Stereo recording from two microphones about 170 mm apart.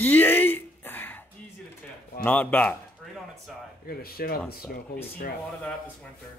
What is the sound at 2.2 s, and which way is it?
Speech, 10° left (ahead or behind).